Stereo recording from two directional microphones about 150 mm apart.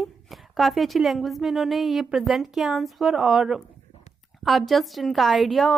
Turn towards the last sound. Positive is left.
turn(degrees=0)  # may be behind; listen again after turning